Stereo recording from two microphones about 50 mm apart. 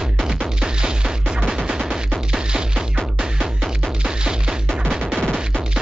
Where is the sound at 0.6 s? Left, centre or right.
Centre.